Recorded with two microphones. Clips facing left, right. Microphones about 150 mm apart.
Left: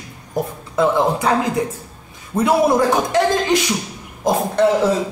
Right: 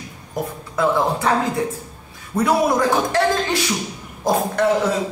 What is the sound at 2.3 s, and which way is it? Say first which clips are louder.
Speech: left 3 dB; 25° left (ahead or behind).